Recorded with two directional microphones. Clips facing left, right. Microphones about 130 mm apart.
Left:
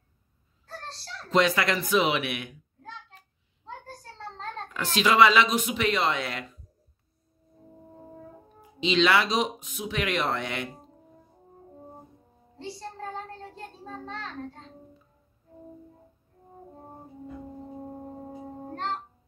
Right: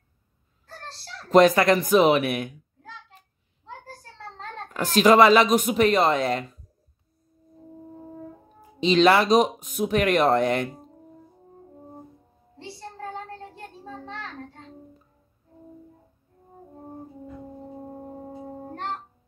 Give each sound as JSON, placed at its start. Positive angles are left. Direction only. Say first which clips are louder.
{"t": 0.9, "sound": "speech", "louder": "right 7 dB", "side_deg": -45}
{"t": 4.7, "sound": "speech", "louder": "right 5 dB", "side_deg": -45}
{"t": 8.5, "sound": "speech", "louder": "right 5 dB", "side_deg": -40}